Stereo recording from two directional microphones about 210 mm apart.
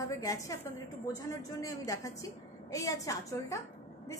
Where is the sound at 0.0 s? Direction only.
15° left (ahead or behind).